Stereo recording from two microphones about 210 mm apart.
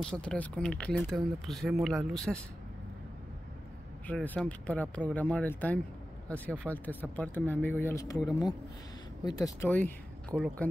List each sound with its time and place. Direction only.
0.0 s speech: 5° left (ahead or behind)
4.1 s speech: 5° left (ahead or behind)
10.3 s speech: centre (ahead or behind)